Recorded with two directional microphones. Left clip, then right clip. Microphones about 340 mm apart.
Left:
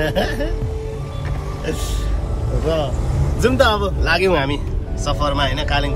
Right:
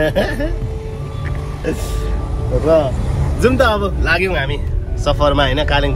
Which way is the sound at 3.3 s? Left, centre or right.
Centre.